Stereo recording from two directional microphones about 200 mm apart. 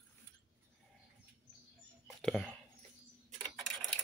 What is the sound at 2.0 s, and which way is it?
Whispering, 5° left (ahead or behind).